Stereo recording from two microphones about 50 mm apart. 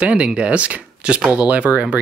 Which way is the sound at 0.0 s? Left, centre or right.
Right.